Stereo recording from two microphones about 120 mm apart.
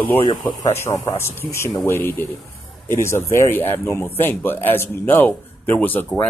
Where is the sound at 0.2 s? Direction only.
35° left (ahead or behind).